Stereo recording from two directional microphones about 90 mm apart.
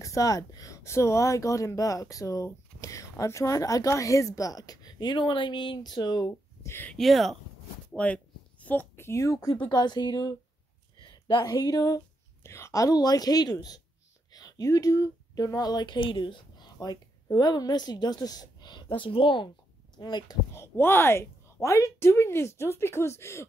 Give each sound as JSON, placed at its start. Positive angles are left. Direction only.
{"t": 0.0, "sound": "speech", "side_deg": 40}
{"t": 6.6, "sound": "a sound", "side_deg": 25}
{"t": 7.0, "sound": "speech", "side_deg": 0}
{"t": 7.9, "sound": "speech", "side_deg": 15}
{"t": 9.7, "sound": "a woman's voice", "side_deg": 55}
{"t": 12.4, "sound": "speech", "side_deg": 30}
{"t": 18.9, "sound": "speech", "side_deg": 80}
{"t": 20.0, "sound": "speech", "side_deg": 55}
{"t": 20.5, "sound": "speech", "side_deg": 30}